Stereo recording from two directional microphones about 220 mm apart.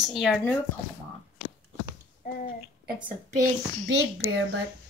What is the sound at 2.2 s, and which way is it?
Speech, 35° left (ahead or behind).